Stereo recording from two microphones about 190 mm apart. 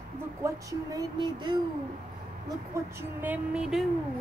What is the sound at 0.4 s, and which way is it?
Speech, 20° right (ahead or behind).